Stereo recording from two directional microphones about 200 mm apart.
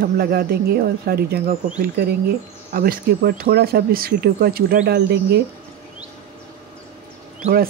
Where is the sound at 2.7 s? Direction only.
45° right (ahead or behind).